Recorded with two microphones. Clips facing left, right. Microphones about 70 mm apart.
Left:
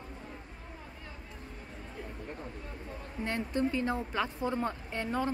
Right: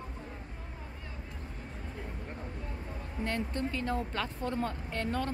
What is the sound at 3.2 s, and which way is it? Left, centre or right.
Speech, centre.